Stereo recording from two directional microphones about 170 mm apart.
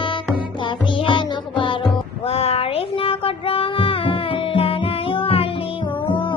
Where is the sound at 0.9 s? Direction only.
30° left (ahead or behind).